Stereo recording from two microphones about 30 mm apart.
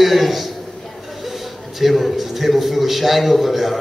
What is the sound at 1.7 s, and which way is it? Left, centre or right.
A man's voice, centre.